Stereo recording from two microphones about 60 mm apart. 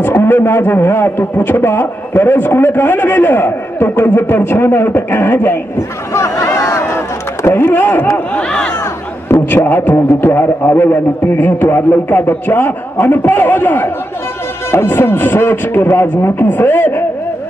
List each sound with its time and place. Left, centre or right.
0.0 s a man's voice: left
5.8 s a sound: left
7.4 s a man's voice: left
8.0 s speech: left
8.5 s speech: centre
9.5 s a man's voice: left